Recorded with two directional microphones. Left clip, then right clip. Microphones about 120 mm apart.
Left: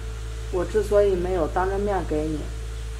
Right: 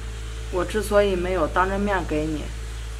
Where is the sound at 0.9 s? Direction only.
50° right (ahead or behind).